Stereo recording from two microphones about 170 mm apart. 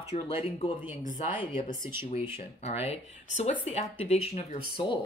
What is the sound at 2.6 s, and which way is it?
Speech, 40° left (ahead or behind).